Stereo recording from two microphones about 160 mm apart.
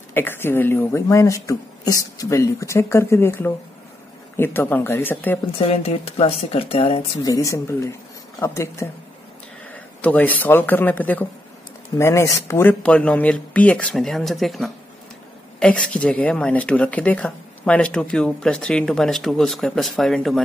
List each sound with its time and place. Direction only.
0.1 s speech: 15° left (ahead or behind)
5.6 s speech: 40° left (ahead or behind)
7.2 s speech: 20° left (ahead or behind); by 20.4 s centre (ahead or behind)